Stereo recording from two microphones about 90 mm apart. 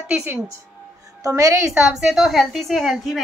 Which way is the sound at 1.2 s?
40° right (ahead or behind).